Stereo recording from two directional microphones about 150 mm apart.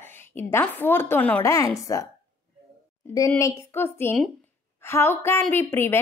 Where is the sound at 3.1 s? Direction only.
20° left (ahead or behind).